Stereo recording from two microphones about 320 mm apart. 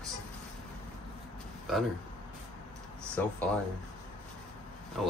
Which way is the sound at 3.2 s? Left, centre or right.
Centre.